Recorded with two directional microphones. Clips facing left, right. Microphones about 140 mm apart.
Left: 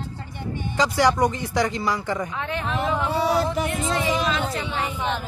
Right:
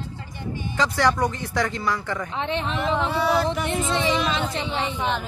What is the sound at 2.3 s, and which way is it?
Speech, 25° right (ahead or behind).